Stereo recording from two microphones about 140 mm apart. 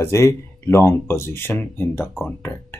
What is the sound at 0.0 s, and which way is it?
Speech, 20° left (ahead or behind).